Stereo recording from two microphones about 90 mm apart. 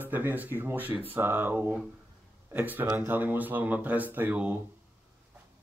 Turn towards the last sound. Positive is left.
turn(degrees=-20)  # may be behind; listen again after turning